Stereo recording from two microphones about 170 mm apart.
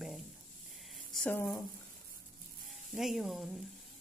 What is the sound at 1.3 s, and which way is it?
Speech, 15° left (ahead or behind).